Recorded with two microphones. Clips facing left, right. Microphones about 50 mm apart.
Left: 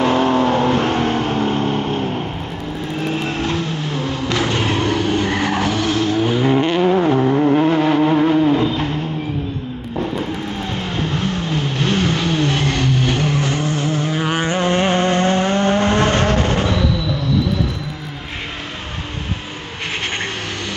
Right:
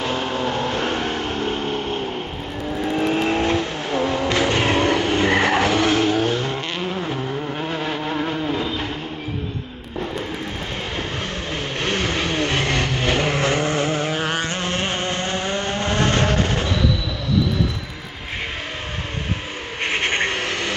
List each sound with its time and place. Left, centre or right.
0.0 s vehicle: centre
0.7 s vehicle: centre
3.3 s vehicle: right
4.6 s vehicle: right
6.1 s vehicle: centre
6.4 s vehicle: centre
11.5 s vehicle: right
14.1 s vehicle: centre
14.5 s a sound: centre
14.9 s vehicle: left
16.2 s music: centre
19.9 s vehicle: right